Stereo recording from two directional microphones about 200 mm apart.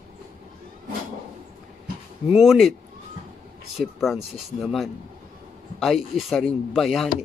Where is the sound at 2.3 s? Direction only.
Centre (ahead or behind).